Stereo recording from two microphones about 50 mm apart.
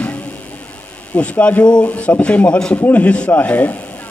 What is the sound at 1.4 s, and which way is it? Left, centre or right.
Speech, left.